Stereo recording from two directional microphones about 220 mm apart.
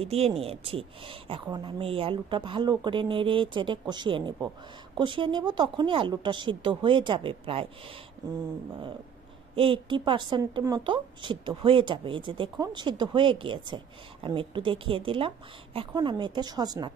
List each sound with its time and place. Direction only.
0.0 s a woman's voice: 25° right (ahead or behind)
9.6 s a woman's voice: 25° right (ahead or behind)